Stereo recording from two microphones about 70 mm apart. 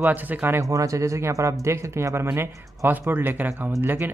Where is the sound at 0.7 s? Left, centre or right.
Right.